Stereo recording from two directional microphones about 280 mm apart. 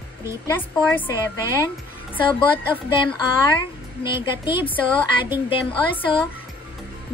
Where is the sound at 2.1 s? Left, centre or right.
Centre.